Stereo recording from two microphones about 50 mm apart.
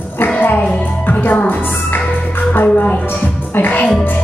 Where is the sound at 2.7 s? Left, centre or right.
Left.